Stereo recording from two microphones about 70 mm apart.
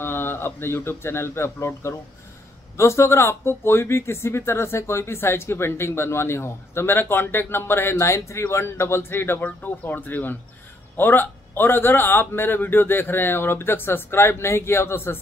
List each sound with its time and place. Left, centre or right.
0.0 s speech: left